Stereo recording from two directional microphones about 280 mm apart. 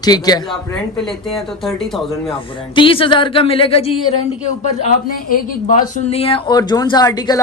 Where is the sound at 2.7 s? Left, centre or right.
Centre.